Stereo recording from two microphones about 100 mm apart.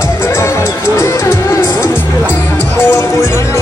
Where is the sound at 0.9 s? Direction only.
30° left (ahead or behind).